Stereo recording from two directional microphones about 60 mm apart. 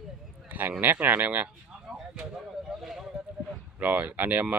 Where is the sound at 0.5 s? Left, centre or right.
Right.